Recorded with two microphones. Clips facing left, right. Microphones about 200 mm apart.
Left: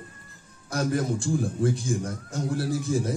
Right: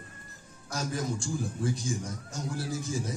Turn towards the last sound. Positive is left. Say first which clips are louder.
# left 7 dB
turn(degrees=60)  # may be behind; listen again after turning